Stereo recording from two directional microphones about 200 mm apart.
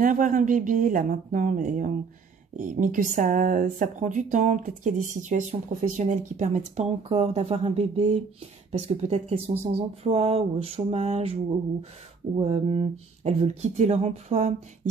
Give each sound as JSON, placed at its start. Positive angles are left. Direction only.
{"t": 0.0, "sound": "speech", "side_deg": -40}
{"t": 12.4, "sound": "speech", "side_deg": -30}